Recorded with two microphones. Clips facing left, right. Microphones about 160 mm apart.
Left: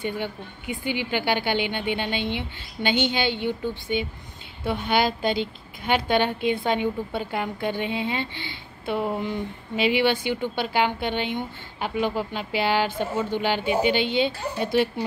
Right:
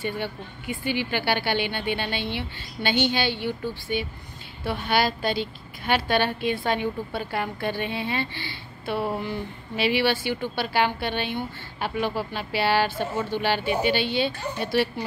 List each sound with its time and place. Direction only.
0.0 s a woman's voice: 15° left (ahead or behind)